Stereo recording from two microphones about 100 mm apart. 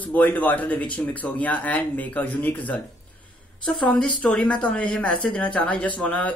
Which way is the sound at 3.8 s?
10° left (ahead or behind).